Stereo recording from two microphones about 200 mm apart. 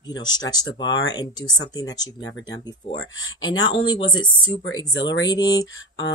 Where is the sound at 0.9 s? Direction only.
65° left (ahead or behind).